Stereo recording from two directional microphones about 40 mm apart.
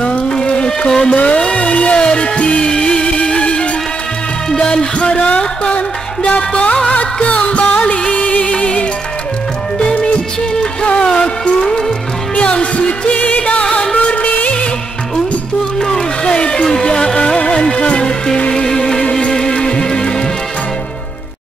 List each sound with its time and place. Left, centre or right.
0.0 s music: left
1.1 s music: left
10.5 s music: left
12.4 s music: left
13.1 s music: left
13.9 s music of bollywood: left
15.8 s music: centre
16.3 s a sound: left
16.6 s music: centre